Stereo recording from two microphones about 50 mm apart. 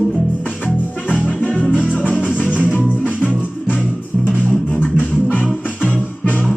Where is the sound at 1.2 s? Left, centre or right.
Left.